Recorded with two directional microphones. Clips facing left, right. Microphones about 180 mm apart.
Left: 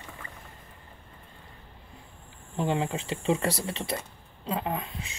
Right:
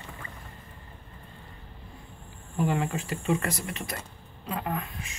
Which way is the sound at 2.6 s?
25° left (ahead or behind).